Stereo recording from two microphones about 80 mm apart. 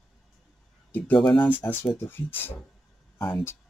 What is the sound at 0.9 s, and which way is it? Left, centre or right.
Speech, left.